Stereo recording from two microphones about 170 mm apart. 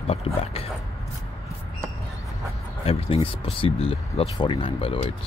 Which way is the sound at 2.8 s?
35° left (ahead or behind).